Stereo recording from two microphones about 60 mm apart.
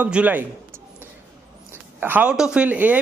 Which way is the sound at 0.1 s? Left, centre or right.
Right.